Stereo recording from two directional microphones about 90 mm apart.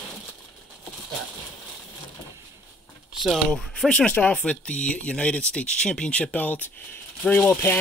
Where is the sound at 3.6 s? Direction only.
5° left (ahead or behind).